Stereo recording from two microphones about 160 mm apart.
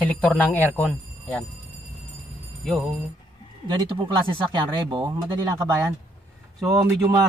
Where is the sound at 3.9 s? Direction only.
30° right (ahead or behind).